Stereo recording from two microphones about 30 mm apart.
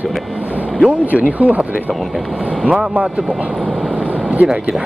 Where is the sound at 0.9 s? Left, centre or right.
Right.